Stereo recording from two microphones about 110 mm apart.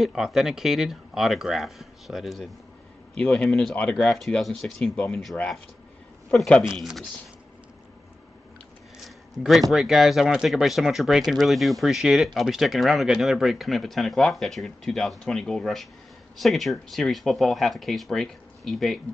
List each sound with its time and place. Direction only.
0.0 s speech: 5° right (ahead or behind)
9.0 s speech: centre (ahead or behind)